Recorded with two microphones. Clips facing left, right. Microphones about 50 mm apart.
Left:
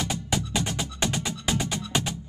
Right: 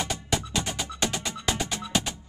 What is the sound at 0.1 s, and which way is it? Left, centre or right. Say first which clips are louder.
Music: left 1 dB; centre.